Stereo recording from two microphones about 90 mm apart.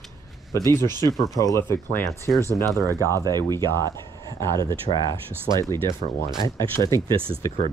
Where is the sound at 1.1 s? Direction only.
Centre (ahead or behind).